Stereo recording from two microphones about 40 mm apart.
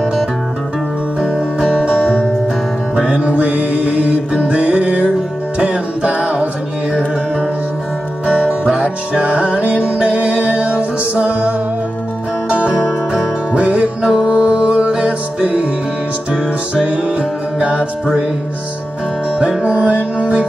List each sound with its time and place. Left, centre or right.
3.0 s music: right
8.5 s music: right
16.8 s music: right
19.6 s music: right